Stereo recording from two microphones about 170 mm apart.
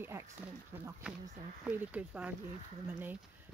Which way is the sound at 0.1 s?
15° right (ahead or behind).